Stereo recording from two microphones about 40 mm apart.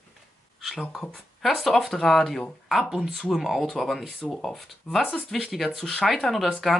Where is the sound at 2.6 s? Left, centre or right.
Centre.